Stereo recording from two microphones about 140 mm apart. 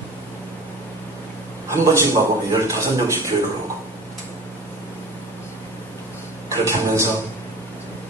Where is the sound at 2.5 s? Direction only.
20° right (ahead or behind).